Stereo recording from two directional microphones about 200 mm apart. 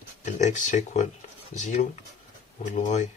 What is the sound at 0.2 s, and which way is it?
Speech, 35° left (ahead or behind).